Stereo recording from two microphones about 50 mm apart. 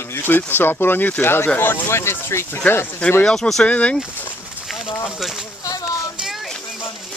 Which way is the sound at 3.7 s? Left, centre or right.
Left.